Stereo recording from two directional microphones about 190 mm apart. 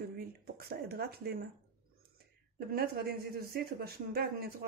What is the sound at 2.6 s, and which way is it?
Speech, 55° right (ahead or behind).